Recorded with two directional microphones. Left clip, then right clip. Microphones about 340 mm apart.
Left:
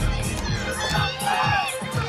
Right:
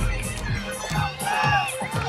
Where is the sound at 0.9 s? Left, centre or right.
Centre.